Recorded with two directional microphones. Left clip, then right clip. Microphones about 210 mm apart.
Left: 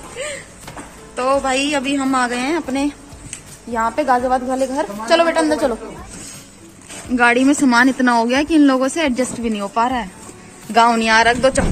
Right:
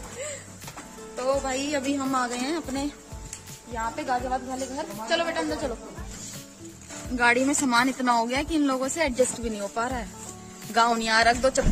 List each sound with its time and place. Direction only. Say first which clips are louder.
0.2 s a sound: left 9 dB; 5° right (ahead or behind)
1.1 s speech: left 10 dB; 5° right (ahead or behind)
3.7 s a woman's voice: left 12 dB; 30° left (ahead or behind)
7.2 s speech: left 8 dB; centre (ahead or behind)